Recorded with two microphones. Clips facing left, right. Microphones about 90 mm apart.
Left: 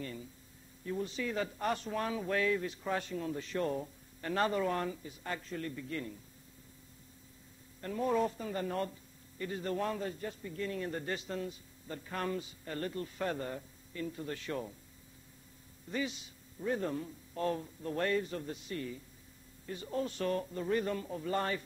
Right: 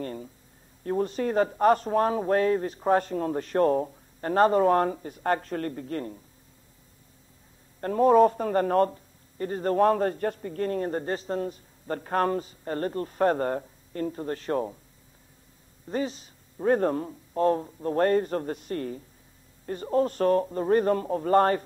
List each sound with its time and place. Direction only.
0.0 s a sound: 45° right (ahead or behind)
0.8 s speech: 50° right (ahead or behind)
7.8 s speech: 50° right (ahead or behind)
15.9 s speech: 40° right (ahead or behind)
16.5 s speech: 60° right (ahead or behind)